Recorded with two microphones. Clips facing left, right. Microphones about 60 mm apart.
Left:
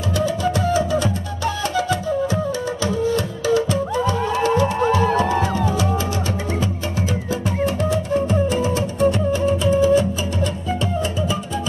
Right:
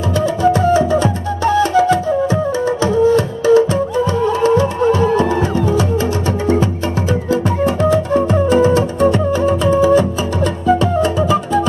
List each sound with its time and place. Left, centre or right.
0.2 s music: right
7.6 s music: right